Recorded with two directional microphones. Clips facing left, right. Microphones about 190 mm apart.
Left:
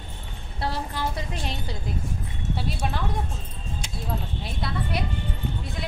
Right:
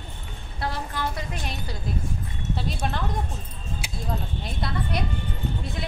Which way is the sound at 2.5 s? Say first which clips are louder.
Even; 10° left (ahead or behind).